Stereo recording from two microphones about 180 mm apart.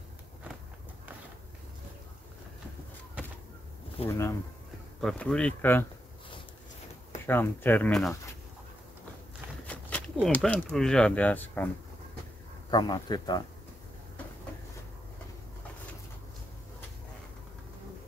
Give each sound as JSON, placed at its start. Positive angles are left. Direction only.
{"t": 4.1, "sound": "speech", "side_deg": 15}
{"t": 5.0, "sound": "speech", "side_deg": 5}
{"t": 7.2, "sound": "speech", "side_deg": 10}
{"t": 9.7, "sound": "walk", "side_deg": 5}
{"t": 10.2, "sound": "speech", "side_deg": 5}
{"t": 12.7, "sound": "speech", "side_deg": 25}